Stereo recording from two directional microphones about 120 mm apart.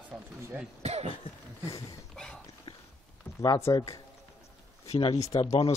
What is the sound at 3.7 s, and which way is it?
Speech, 35° left (ahead or behind).